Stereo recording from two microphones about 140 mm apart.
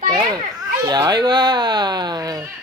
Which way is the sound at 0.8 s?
25° right (ahead or behind).